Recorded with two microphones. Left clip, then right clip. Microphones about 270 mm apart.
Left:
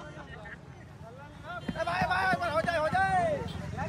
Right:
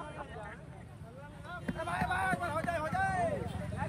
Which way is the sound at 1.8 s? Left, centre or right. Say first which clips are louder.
Left 5 dB; left.